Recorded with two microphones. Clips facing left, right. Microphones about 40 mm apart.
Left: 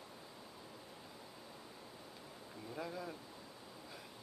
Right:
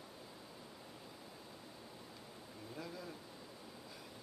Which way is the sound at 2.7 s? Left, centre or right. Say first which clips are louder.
Left 4 dB; centre.